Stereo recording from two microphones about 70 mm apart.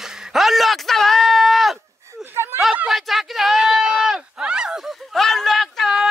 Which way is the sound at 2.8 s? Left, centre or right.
Centre.